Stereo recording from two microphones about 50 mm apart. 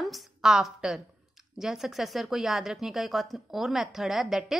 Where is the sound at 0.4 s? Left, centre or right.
Centre.